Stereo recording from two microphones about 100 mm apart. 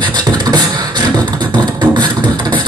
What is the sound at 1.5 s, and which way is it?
Beatboxing, 50° right (ahead or behind).